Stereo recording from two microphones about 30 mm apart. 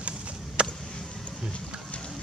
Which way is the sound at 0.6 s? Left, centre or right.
Right.